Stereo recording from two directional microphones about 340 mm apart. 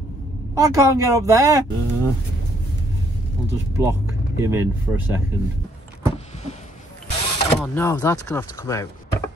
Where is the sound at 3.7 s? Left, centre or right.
Centre.